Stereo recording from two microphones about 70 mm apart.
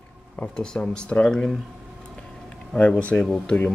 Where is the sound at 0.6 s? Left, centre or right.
Centre.